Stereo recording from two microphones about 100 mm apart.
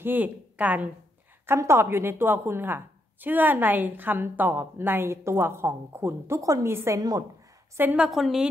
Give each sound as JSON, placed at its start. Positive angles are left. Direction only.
{"t": 0.0, "sound": "a woman's voice", "side_deg": -15}
{"t": 1.4, "sound": "a woman's voice", "side_deg": -25}
{"t": 7.0, "sound": "a woman's voice", "side_deg": -40}
{"t": 7.9, "sound": "a woman's voice", "side_deg": -5}